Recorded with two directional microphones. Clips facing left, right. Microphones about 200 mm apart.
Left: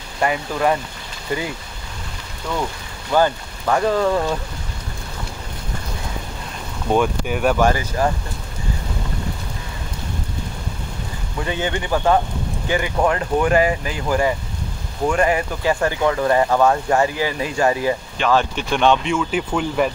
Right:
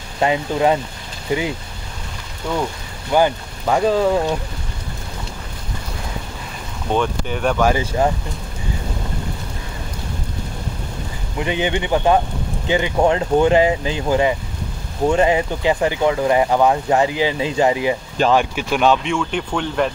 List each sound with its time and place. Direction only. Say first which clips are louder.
0.2 s speech: right 3 dB; 20° right (ahead or behind)
3.1 s speech: right 1 dB; 15° right (ahead or behind)
6.9 s speech: left 2 dB; 10° left (ahead or behind)
7.7 s speech: right 2 dB; 20° right (ahead or behind)
11.3 s speech: right 3 dB; 15° right (ahead or behind); by 19.9 s 5° left (ahead or behind)